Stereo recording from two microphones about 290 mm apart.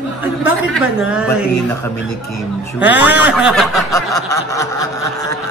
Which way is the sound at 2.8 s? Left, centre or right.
Centre.